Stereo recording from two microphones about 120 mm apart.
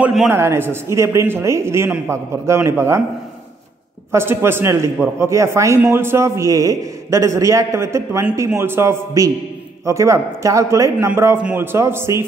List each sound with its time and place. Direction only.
0.3 s a man's voice: 20° right (ahead or behind)
4.1 s a man's voice: 20° right (ahead or behind)